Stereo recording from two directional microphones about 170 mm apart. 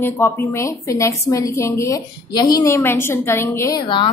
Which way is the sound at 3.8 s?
30° left (ahead or behind).